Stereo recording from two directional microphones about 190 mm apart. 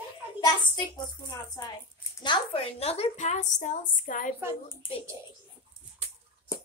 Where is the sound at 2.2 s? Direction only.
30° left (ahead or behind).